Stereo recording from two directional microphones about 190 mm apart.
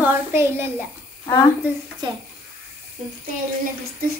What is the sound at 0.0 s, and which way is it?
Speech, 10° right (ahead or behind).